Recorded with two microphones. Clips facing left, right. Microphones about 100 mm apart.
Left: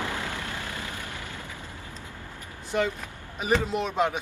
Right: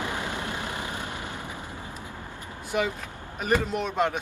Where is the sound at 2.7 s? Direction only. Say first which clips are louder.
Left 1 dB; 5° right (ahead or behind).